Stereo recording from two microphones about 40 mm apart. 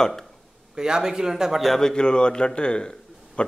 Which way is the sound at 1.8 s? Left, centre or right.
Centre.